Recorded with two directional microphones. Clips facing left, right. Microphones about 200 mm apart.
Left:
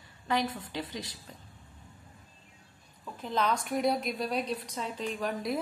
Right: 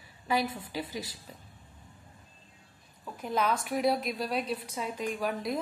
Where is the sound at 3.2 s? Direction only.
10° right (ahead or behind).